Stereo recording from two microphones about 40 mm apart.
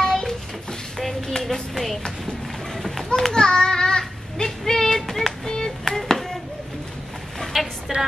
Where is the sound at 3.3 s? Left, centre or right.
Centre.